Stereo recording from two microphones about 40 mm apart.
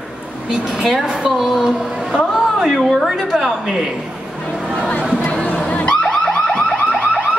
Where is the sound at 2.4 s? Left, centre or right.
Centre.